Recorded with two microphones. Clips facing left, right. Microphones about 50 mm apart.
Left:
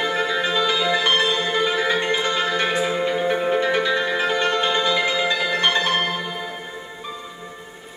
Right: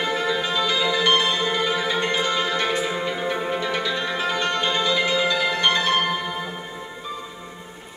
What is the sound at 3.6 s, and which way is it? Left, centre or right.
Music, left.